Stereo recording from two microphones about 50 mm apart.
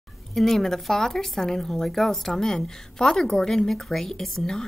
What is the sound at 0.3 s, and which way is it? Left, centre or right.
A woman's voice, centre.